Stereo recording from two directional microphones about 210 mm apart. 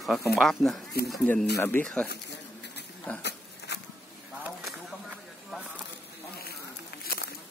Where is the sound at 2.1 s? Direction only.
55° left (ahead or behind).